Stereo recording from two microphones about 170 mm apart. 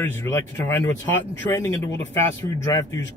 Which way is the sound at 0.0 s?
15° left (ahead or behind).